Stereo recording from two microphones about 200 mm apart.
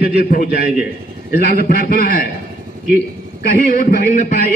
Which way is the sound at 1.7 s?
50° left (ahead or behind).